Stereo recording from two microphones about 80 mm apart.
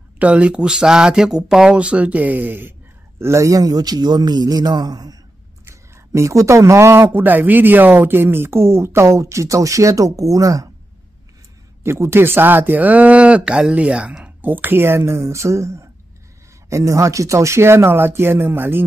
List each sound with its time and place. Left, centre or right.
0.2 s speech: centre
3.2 s a man's voice: right
5.7 s speech: right
7.1 s speech: right
11.8 s speech: right